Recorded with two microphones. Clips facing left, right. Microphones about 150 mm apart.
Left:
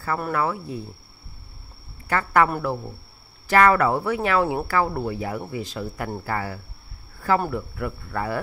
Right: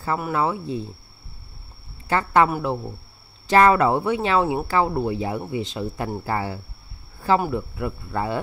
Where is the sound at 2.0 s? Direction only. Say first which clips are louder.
Right 2 dB; 25° right (ahead or behind).